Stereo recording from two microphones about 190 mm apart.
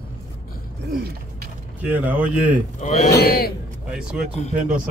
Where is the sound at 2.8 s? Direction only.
35° left (ahead or behind).